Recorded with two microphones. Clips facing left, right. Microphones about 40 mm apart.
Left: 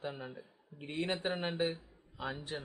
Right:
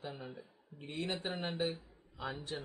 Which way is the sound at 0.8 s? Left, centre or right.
Left.